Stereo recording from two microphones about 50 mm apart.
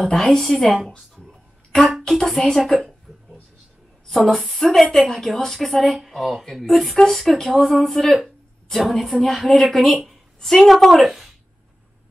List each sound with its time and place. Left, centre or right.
0.1 s a woman's voice: centre
1.1 s a sound: centre
2.0 s a woman's voice: centre
4.1 s a woman's voice: centre